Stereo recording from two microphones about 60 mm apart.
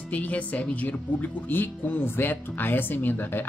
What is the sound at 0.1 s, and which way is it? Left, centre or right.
Speech, left.